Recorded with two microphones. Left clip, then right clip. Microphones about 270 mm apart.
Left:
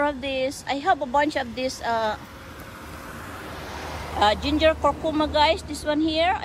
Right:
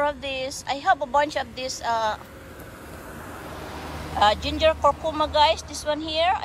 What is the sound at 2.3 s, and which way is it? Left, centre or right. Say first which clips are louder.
Vehicle: left 2 dB; centre.